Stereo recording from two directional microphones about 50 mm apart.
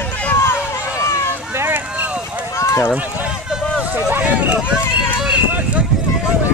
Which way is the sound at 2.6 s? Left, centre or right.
Left.